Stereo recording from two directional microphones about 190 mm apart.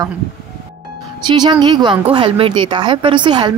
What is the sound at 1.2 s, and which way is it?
A woman's voice, 25° right (ahead or behind).